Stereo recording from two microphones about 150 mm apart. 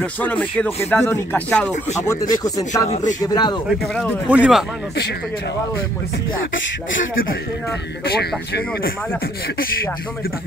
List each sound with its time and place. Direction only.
0.0 s speech: 10° left (ahead or behind)
2.4 s speech: 25° left (ahead or behind)
2.9 s speech: 55° left (ahead or behind)
3.2 s speech: 25° left (ahead or behind)
3.8 s speech: 5° left (ahead or behind)
4.3 s speech: 5° right (ahead or behind)
8.0 s speech: 90° left